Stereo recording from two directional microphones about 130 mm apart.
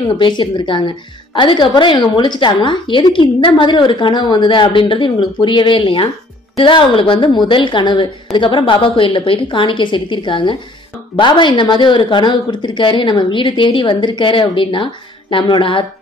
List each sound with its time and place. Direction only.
0.2 s a woman's voice: 35° left (ahead or behind)